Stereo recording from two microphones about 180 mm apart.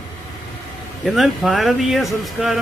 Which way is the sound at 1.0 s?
Centre (ahead or behind).